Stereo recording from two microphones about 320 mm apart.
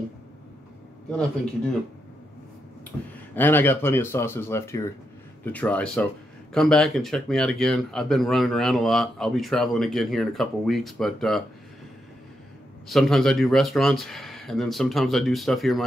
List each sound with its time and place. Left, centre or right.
3.3 s speech: centre
12.8 s speech: centre